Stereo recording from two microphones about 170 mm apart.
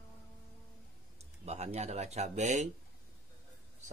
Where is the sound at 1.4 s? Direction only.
40° right (ahead or behind).